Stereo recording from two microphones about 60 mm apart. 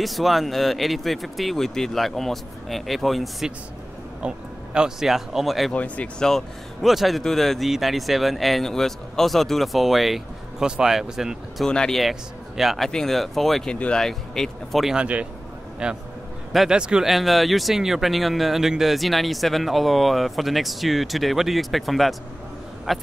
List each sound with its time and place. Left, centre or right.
0.0 s speech: centre
4.2 s speech: centre
5.7 s speech: left
6.2 s speech: centre
11.6 s speech: centre
12.0 s a man's voice: centre
13.7 s speech: centre
15.0 s a man's voice: right
17.1 s speech: centre